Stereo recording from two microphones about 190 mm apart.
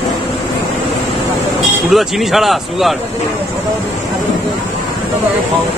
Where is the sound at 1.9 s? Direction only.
Centre (ahead or behind).